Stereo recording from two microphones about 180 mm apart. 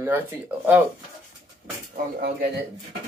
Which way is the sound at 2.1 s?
55° right (ahead or behind).